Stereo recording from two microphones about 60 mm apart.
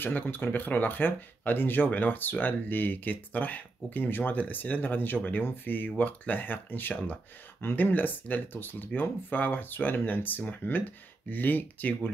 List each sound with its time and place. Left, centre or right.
0.0 s speech: left